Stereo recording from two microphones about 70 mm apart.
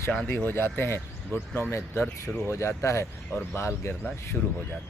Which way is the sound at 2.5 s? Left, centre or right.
Left.